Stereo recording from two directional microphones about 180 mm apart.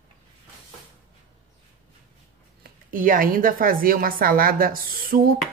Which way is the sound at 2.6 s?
50° right (ahead or behind).